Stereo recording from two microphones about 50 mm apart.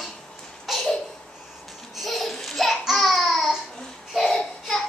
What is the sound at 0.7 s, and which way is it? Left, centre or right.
Babbling, centre.